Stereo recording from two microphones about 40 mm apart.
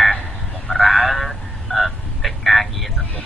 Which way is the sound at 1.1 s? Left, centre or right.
Centre.